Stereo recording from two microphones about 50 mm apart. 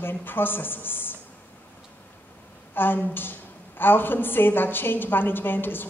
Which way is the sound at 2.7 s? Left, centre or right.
Left.